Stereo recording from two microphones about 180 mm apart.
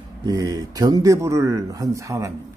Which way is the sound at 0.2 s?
20° right (ahead or behind).